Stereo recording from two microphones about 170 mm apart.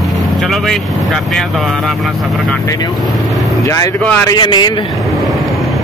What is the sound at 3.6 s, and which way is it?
Speech, 20° left (ahead or behind).